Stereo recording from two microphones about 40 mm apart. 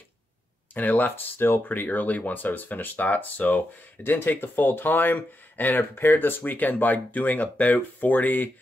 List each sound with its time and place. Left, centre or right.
0.7 s speech: left
4.2 s speech: left